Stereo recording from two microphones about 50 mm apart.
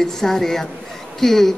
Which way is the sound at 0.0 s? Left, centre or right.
Centre.